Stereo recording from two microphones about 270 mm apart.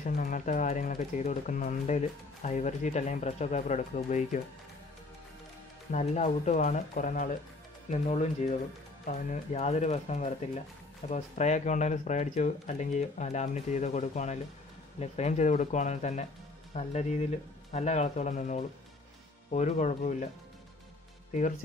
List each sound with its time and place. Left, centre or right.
0.0 s speech: left
5.9 s speech: left
21.3 s speech: left